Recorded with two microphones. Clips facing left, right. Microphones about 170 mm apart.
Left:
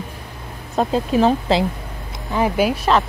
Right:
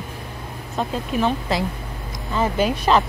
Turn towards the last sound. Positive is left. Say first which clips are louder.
# left 1 dB
turn(degrees=0)  # may be behind; listen again after turning